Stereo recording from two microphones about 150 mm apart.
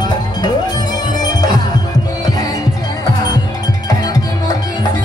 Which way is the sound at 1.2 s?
25° left (ahead or behind).